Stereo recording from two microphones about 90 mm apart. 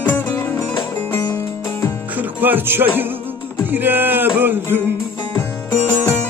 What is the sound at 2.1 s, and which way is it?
Speech, 20° right (ahead or behind).